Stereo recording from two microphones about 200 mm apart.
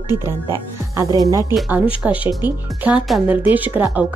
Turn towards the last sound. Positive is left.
turn(degrees=-10)  # may be behind; listen again after turning